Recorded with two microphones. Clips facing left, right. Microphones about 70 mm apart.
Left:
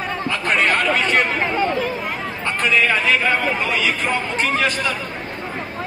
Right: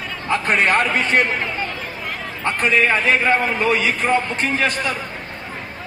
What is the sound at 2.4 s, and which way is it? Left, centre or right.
A man's voice, right.